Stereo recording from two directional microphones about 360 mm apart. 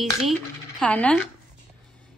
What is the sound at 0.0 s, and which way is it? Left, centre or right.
A woman's voice, centre.